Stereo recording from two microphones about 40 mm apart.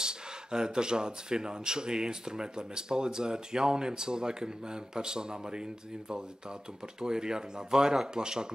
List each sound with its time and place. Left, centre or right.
0.0 s speech: centre